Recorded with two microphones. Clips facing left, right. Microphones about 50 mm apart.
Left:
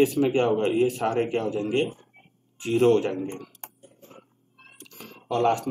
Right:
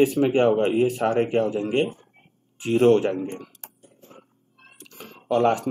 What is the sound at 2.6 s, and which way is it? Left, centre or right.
Speech, centre.